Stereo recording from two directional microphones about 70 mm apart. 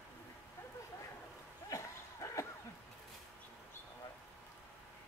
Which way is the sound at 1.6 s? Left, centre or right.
Left.